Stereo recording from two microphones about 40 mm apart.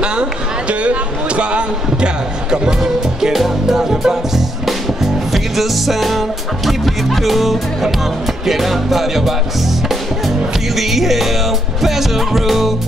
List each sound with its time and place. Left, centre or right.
0.0 s speech: right
2.8 s music: centre
10.8 s music: centre